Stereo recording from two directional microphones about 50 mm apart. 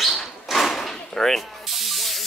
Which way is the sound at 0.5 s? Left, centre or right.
Centre.